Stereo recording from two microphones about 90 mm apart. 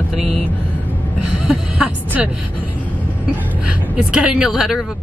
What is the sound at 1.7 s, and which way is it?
Music, 10° right (ahead or behind).